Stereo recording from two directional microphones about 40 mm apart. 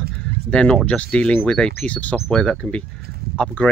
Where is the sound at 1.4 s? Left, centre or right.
Centre; by 2.2 s left.